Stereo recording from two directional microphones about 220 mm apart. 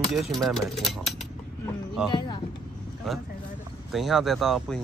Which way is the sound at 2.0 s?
20° left (ahead or behind).